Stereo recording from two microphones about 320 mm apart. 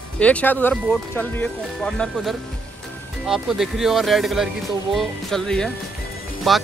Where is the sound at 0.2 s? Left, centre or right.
Centre.